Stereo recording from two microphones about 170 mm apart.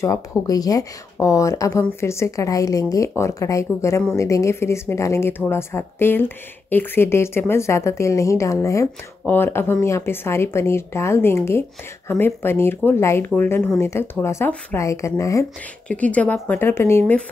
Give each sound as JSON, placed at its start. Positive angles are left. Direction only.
{"t": 0.0, "sound": "speech", "side_deg": 20}